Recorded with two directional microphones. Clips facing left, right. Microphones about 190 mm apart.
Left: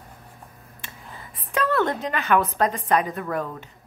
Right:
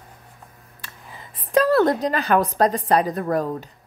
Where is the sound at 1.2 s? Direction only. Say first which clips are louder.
Right 7 dB; 35° right (ahead or behind).